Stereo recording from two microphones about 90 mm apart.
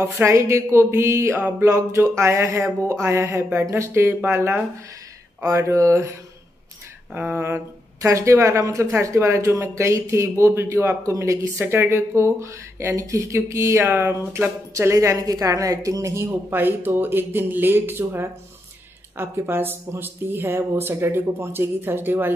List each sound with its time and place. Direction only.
0.0 s a woman's voice: 35° right (ahead or behind)
7.2 s a woman's voice: 25° right (ahead or behind)